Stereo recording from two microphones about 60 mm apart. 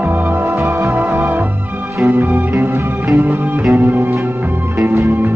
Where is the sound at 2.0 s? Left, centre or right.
Right.